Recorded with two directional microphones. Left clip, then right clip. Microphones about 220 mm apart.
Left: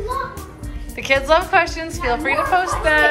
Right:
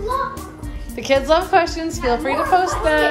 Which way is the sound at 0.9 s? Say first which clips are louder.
Even; 15° right (ahead or behind).